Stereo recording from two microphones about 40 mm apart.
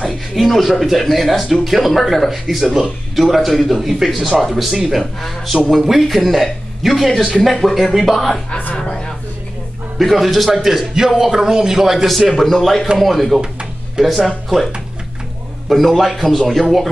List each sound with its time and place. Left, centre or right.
0.4 s a man's voice: centre
8.7 s a sound: left
9.9 s a man's voice: centre
13.4 s music: centre
14.0 s speech: centre
15.7 s speech: centre